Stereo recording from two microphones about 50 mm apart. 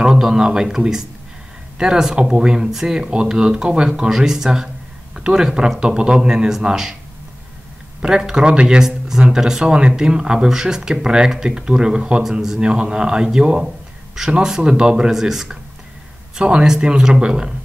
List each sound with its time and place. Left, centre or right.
0.0 s speech: centre
8.0 s speech: centre
12.5 s speech: centre
16.3 s speech: right